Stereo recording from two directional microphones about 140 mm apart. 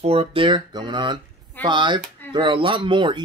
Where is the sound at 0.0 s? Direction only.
45° right (ahead or behind).